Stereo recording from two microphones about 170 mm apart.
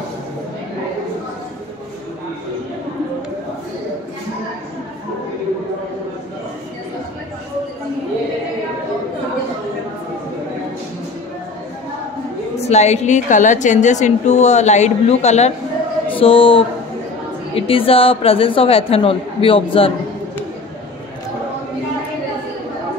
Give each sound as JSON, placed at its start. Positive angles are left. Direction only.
{"t": 12.5, "sound": "a woman's voice", "side_deg": 40}